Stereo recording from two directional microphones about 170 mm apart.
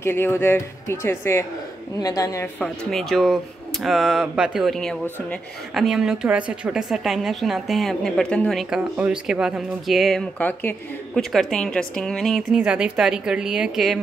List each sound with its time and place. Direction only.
0.0 s speech: 15° left (ahead or behind)
2.6 s a woman's voice: centre (ahead or behind)